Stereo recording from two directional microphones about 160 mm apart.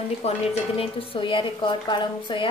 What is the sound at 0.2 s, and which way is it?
A woman's voice, 40° left (ahead or behind).